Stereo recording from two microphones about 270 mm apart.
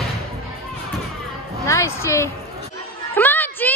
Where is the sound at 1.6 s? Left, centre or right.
Centre.